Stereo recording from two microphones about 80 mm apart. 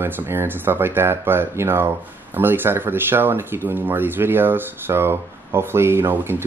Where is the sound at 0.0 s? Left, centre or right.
Right.